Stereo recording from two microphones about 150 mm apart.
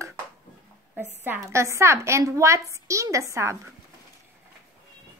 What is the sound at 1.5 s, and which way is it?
A woman's voice, 20° right (ahead or behind).